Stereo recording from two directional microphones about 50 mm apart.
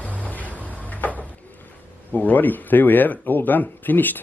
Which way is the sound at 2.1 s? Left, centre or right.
Left.